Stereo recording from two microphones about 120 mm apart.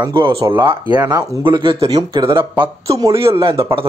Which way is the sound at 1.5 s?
45° right (ahead or behind).